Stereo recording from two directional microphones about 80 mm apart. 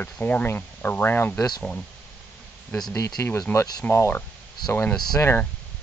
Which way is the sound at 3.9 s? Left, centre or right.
Left.